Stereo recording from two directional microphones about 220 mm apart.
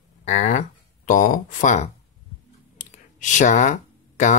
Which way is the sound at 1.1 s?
35° left (ahead or behind).